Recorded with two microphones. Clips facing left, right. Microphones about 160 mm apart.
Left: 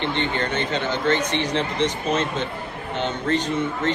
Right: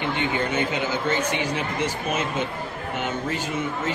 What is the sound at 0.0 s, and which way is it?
A woman's voice, 10° right (ahead or behind).